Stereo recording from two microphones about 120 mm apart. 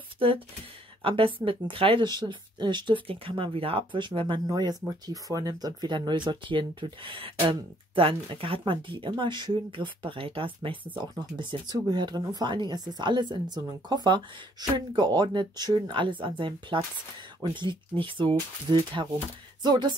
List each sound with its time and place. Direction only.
1.0 s speech: 45° right (ahead or behind)
4.5 s speech: 35° right (ahead or behind)